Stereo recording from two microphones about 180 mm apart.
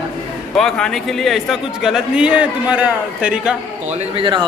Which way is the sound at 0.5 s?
5° left (ahead or behind).